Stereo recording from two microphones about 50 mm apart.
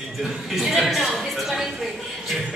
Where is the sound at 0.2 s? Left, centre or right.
Centre.